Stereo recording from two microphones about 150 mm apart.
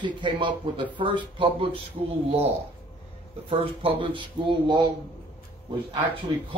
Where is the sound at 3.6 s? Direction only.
35° right (ahead or behind).